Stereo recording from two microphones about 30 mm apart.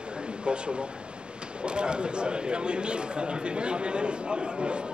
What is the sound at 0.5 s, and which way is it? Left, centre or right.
Speech, right.